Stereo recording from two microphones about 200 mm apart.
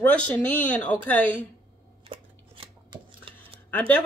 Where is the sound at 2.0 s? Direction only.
25° right (ahead or behind).